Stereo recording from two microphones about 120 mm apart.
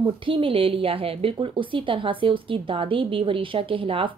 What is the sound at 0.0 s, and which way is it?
A woman's voice, 45° right (ahead or behind).